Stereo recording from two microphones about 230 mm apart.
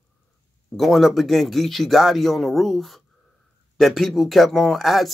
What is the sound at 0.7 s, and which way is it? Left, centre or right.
A man's voice, centre.